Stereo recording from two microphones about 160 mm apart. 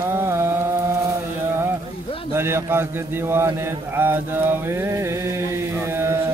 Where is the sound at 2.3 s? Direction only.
15° right (ahead or behind).